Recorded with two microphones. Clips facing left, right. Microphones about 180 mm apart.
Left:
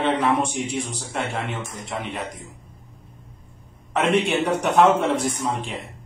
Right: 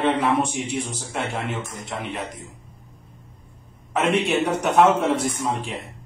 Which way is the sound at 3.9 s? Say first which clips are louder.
Even; centre (ahead or behind).